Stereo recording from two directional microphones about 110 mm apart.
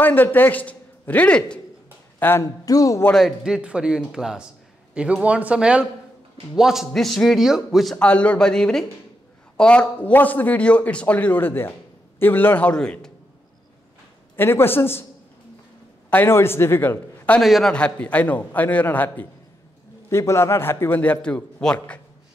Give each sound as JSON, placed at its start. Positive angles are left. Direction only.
{"t": 0.0, "sound": "a man's voice", "side_deg": 15}
{"t": 2.6, "sound": "a man's voice", "side_deg": 35}
{"t": 3.2, "sound": "a man's voice", "side_deg": 0}
{"t": 14.3, "sound": "a man's voice", "side_deg": 20}
{"t": 16.1, "sound": "a man's voice", "side_deg": 20}
{"t": 17.4, "sound": "speech", "side_deg": 0}
{"t": 17.7, "sound": "a man's voice", "side_deg": 10}